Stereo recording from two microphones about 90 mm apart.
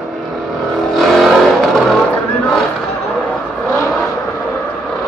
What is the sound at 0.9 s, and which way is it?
Vehicle, centre (ahead or behind).